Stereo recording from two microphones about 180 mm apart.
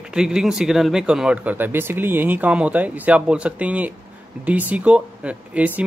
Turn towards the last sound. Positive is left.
turn(degrees=-5)  # may be behind; listen again after turning